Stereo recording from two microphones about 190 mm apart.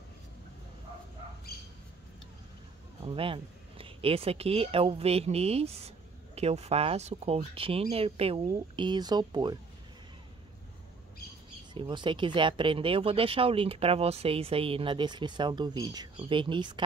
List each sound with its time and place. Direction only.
3.0 s speech: 30° right (ahead or behind)
11.7 s speech: 25° right (ahead or behind)